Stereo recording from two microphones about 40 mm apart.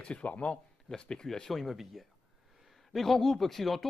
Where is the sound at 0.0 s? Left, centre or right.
Left.